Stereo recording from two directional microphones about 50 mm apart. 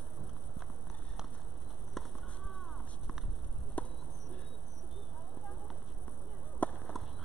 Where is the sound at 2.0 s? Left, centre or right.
Centre.